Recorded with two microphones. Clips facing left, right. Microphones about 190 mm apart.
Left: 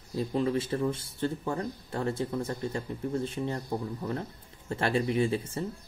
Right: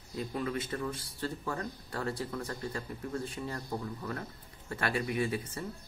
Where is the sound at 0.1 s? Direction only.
25° left (ahead or behind).